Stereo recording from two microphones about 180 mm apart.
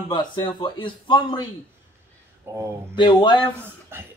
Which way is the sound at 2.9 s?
25° left (ahead or behind).